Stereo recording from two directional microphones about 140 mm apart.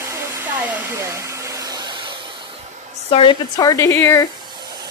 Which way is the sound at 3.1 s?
35° left (ahead or behind).